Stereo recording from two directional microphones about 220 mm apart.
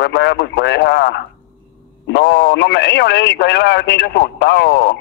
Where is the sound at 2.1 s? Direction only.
50° left (ahead or behind).